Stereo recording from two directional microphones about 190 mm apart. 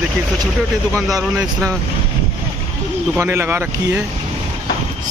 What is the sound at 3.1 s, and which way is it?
Speech, 10° right (ahead or behind).